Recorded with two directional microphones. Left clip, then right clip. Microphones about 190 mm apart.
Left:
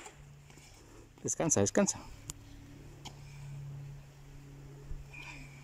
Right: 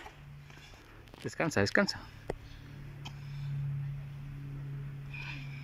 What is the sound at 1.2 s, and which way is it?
Speech, 15° left (ahead or behind).